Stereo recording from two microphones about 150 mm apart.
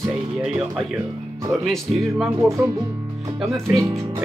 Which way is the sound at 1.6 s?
Centre (ahead or behind).